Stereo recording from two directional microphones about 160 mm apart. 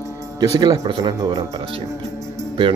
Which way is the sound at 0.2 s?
20° right (ahead or behind).